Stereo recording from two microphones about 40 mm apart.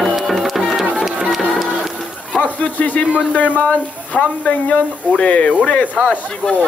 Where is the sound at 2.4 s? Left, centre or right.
Left.